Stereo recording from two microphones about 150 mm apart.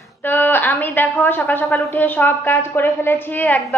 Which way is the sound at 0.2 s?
15° left (ahead or behind).